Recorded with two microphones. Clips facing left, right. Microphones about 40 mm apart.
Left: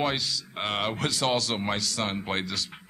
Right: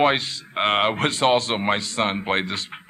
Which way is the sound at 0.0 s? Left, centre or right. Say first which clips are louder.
Right 8 dB; right.